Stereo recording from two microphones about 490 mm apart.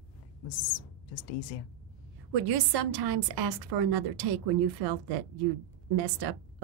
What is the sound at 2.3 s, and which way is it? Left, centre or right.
A woman's voice, right.